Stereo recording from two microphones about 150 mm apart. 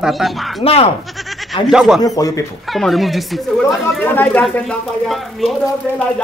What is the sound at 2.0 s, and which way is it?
Speech, 25° left (ahead or behind).